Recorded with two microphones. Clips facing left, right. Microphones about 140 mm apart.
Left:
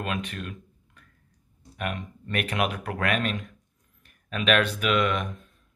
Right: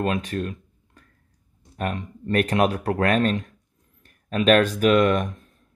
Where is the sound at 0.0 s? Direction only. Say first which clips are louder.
Right 7 dB; 35° right (ahead or behind).